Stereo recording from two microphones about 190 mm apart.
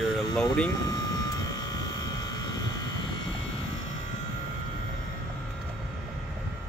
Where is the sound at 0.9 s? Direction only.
20° left (ahead or behind).